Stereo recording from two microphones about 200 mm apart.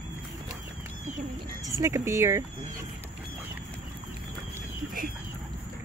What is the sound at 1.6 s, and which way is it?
Speech, 15° right (ahead or behind).